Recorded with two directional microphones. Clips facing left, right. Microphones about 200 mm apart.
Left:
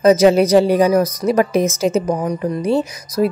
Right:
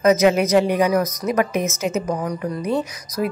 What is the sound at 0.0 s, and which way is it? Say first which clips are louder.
Speech: left 4 dB; 30° left (ahead or behind).